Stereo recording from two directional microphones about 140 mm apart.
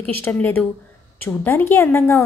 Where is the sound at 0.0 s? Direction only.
10° left (ahead or behind).